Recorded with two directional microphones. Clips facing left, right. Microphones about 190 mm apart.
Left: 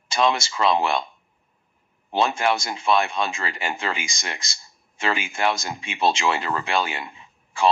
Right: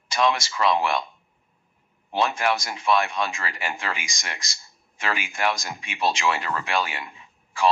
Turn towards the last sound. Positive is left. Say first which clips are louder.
# left 2 dB
turn(degrees=25)  # may be behind; listen again after turning